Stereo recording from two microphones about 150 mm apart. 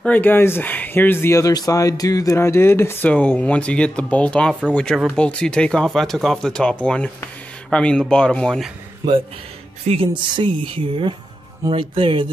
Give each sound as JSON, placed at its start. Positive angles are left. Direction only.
{"t": 0.0, "sound": "speech", "side_deg": 10}
{"t": 9.8, "sound": "speech", "side_deg": -35}